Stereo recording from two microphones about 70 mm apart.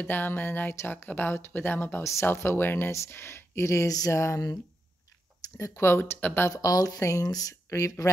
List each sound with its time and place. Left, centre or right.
0.0 s speech: left
5.6 s speech: left
6.5 s speech: left
7.0 s speech: left